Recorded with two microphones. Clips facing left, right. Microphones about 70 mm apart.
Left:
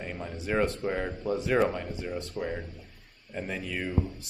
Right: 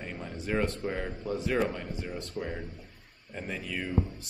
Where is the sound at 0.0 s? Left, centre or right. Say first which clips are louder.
Left 2 dB; centre.